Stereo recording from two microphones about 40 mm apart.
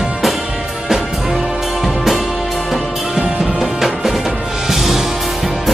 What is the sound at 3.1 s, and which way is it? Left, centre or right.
Music, right.